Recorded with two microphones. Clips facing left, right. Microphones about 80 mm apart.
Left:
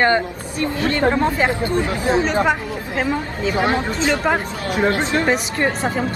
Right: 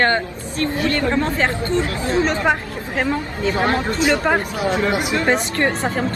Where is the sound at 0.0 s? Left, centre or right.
Centre.